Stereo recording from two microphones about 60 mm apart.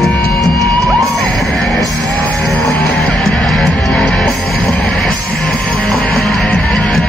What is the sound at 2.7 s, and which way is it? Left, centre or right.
Music, left.